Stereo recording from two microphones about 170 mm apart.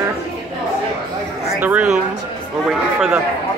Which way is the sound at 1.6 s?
10° right (ahead or behind).